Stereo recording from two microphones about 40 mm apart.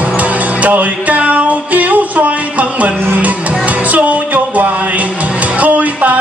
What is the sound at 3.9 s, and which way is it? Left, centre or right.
Music, right.